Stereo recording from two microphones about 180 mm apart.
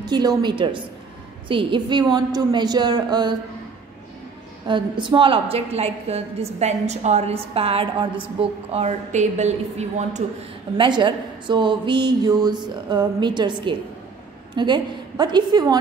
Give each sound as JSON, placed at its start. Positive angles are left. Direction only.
{"t": 0.0, "sound": "speech", "side_deg": -20}
{"t": 4.6, "sound": "a woman's voice", "side_deg": -25}
{"t": 10.8, "sound": "speech", "side_deg": -25}